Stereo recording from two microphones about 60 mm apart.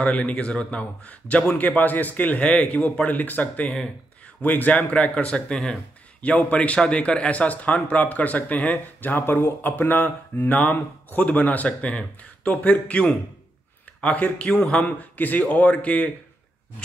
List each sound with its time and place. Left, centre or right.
0.0 s speech: left
14.0 s speech: left